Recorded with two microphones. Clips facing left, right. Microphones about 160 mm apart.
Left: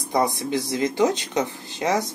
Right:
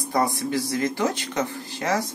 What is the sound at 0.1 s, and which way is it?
Speech, 20° left (ahead or behind).